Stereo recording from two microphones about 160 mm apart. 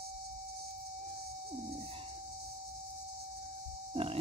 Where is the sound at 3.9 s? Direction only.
35° right (ahead or behind).